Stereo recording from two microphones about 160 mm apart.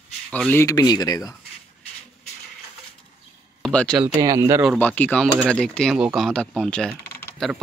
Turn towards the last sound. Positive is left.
turn(degrees=0)  # may be behind; listen again after turning